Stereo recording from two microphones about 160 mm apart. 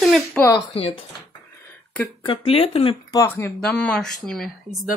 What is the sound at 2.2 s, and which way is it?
Speech, 30° left (ahead or behind).